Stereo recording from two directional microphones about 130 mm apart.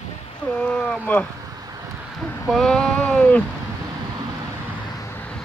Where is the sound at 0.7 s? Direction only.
10° left (ahead or behind).